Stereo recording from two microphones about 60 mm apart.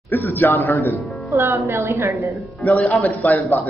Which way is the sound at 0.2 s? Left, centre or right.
Left.